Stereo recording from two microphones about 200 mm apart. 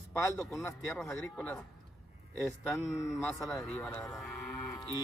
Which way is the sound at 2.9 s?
15° left (ahead or behind).